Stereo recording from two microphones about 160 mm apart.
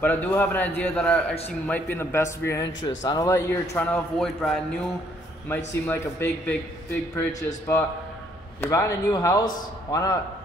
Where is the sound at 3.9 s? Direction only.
5° left (ahead or behind).